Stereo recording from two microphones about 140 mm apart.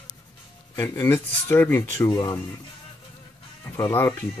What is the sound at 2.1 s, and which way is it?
Speech, 30° left (ahead or behind).